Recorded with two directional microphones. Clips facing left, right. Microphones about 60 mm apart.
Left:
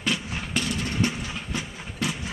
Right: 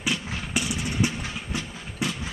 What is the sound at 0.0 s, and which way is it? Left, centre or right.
Vehicle, centre.